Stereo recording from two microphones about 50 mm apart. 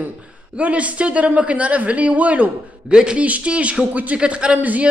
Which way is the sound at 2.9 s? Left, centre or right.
Centre.